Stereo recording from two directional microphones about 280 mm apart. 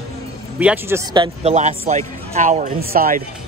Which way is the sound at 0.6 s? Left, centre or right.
Centre.